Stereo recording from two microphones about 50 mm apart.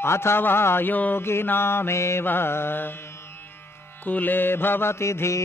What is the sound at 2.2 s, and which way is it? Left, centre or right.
Mantra, left.